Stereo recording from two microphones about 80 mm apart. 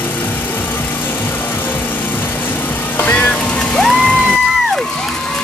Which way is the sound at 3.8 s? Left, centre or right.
Centre.